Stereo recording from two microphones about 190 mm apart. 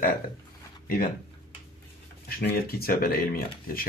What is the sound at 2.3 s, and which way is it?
Speech, 50° left (ahead or behind).